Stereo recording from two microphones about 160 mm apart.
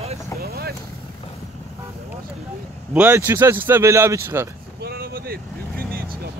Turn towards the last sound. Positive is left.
turn(degrees=-70)  # may be behind; listen again after turning